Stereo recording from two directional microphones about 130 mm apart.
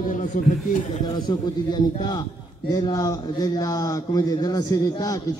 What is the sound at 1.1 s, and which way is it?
A man's voice, 30° left (ahead or behind).